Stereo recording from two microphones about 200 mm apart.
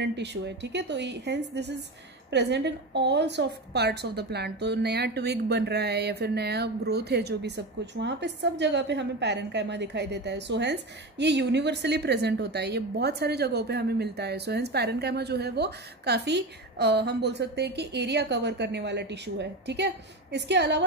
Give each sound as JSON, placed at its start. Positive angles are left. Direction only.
{"t": 0.0, "sound": "a woman's voice", "side_deg": -60}